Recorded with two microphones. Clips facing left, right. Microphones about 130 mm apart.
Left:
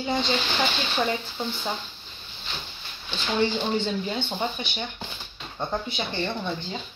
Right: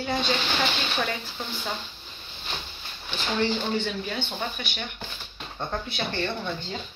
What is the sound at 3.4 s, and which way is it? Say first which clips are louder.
Speech: left 2 dB; 20° left (ahead or behind).